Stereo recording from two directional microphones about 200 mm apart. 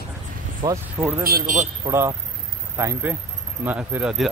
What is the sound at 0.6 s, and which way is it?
Speech, 20° right (ahead or behind).